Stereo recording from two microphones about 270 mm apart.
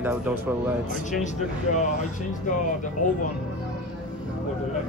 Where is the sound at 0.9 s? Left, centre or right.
Left.